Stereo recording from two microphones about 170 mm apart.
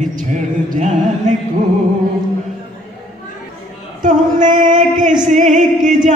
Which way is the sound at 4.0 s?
50° right (ahead or behind).